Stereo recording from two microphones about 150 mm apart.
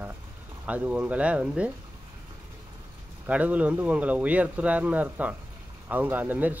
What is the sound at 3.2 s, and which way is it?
Speech, 10° right (ahead or behind).